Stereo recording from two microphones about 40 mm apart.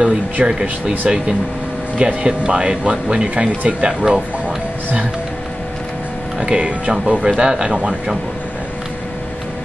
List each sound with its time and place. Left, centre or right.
0.0 s speech: right
2.0 s speech: right
6.4 s speech: right